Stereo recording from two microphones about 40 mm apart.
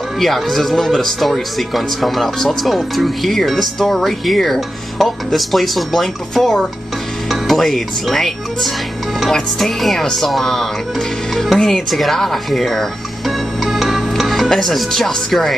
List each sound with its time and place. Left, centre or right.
0.2 s speech: centre
9.6 s speech: centre
13.7 s music: centre